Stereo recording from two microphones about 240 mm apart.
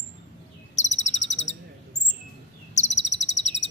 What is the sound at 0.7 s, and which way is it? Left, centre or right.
Bird vocalization, left.